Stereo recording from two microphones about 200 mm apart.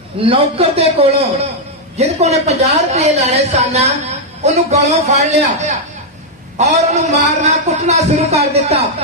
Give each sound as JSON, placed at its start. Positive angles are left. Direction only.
{"t": 0.2, "sound": "a man's voice", "side_deg": -30}